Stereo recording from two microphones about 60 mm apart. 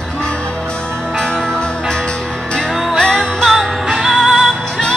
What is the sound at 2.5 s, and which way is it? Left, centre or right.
Music, centre.